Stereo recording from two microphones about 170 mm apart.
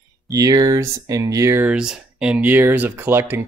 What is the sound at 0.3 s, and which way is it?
Speech, 20° right (ahead or behind).